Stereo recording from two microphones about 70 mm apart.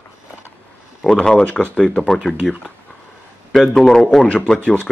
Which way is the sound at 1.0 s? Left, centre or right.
Centre.